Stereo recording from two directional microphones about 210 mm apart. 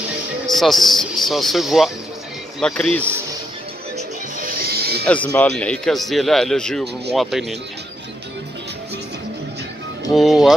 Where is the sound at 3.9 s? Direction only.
40° right (ahead or behind).